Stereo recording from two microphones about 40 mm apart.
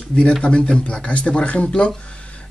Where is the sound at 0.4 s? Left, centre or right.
Left.